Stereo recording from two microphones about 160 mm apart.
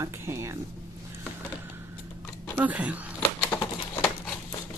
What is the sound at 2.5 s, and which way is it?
Speech, 10° right (ahead or behind).